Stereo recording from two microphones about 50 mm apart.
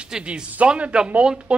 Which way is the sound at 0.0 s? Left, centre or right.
Right.